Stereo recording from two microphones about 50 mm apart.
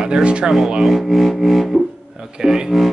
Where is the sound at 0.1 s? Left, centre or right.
Right.